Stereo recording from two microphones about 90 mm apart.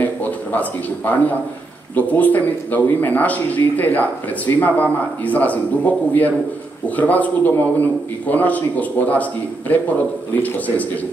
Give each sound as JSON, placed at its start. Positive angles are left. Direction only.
{"t": 0.0, "sound": "a man's voice", "side_deg": 20}